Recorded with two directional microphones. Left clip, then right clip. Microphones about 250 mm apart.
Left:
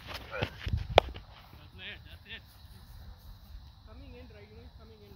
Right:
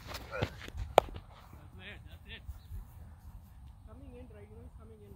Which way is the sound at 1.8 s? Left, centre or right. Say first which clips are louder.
Left 6 dB; centre.